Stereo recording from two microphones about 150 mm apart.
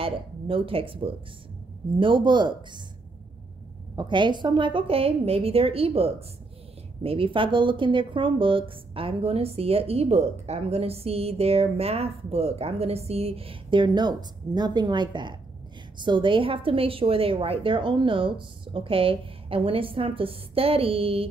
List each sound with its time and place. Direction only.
0.0 s speech: 40° right (ahead or behind)
3.9 s speech: 30° right (ahead or behind)